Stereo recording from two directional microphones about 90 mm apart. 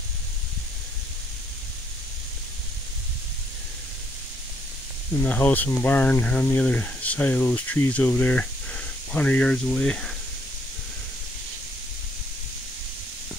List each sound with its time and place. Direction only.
5.2 s speech: 20° left (ahead or behind)